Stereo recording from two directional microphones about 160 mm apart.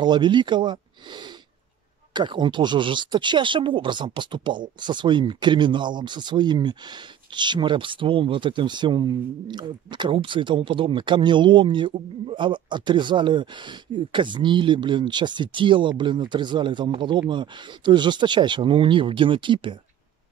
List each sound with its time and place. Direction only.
0.0 s speech: 30° right (ahead or behind)